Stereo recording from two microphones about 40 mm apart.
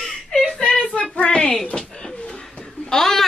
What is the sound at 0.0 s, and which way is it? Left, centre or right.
Whimper, centre.